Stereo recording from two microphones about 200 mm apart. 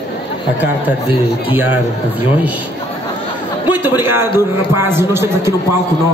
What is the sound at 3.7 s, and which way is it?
A man's voice, 10° right (ahead or behind).